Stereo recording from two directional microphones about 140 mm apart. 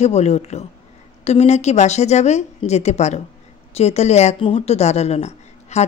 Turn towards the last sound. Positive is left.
turn(degrees=50)  # may be behind; listen again after turning